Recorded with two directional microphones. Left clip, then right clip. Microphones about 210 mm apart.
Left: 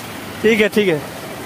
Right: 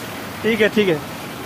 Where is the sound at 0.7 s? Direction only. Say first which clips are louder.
Left 2 dB; 30° left (ahead or behind).